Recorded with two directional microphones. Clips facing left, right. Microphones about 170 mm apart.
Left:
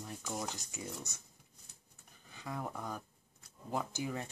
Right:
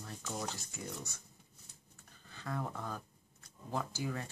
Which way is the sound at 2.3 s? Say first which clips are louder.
Right 1 dB; 15° left (ahead or behind).